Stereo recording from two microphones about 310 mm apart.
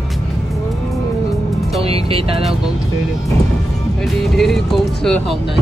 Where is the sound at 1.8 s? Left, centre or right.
Centre.